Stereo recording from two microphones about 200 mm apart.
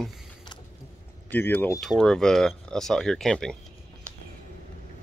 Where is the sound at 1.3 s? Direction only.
10° left (ahead or behind).